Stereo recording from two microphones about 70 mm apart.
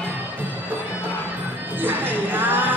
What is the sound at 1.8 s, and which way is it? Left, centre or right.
Music, right.